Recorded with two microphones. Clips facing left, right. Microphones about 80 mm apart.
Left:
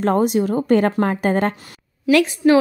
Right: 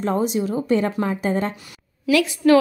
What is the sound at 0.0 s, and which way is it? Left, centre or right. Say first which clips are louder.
A woman's voice: left 4 dB; left.